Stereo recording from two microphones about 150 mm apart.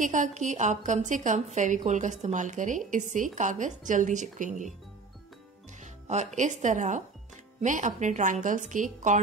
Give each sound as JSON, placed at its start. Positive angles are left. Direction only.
{"t": 0.0, "sound": "a woman's voice", "side_deg": -55}
{"t": 5.8, "sound": "a woman's voice", "side_deg": -50}